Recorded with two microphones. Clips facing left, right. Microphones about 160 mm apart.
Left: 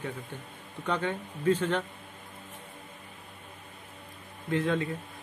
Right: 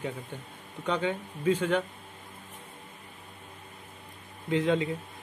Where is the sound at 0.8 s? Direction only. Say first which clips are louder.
Right 1 dB; 15° right (ahead or behind).